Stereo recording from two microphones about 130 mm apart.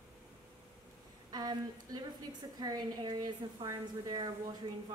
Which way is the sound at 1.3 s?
30° right (ahead or behind).